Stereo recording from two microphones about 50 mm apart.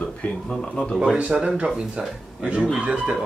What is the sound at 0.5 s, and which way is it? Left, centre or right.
Speech, centre.